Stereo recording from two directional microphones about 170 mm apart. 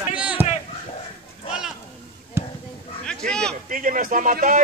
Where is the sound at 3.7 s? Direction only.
50° right (ahead or behind).